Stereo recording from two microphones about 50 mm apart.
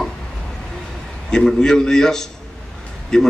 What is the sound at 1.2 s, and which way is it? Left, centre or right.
A man's voice, centre.